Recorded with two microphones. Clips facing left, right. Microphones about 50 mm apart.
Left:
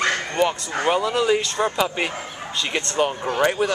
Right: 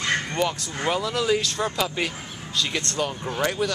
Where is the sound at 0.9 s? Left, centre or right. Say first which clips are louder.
Left 4 dB; left.